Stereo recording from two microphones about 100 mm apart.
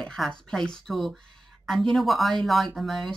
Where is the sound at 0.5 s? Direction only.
5° left (ahead or behind).